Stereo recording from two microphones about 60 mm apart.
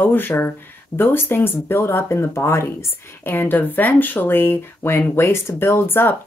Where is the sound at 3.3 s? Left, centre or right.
Left.